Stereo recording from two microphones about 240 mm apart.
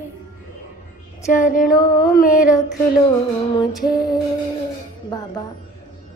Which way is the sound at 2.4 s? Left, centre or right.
Centre.